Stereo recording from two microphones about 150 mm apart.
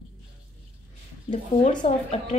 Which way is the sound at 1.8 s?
45° left (ahead or behind).